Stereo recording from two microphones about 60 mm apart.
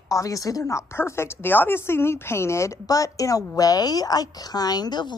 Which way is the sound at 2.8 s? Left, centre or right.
Left.